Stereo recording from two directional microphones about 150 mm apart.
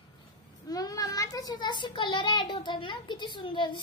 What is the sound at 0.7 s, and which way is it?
A child's voice, 25° left (ahead or behind).